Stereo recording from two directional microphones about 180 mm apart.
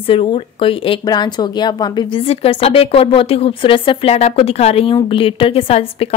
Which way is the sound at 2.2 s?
35° left (ahead or behind).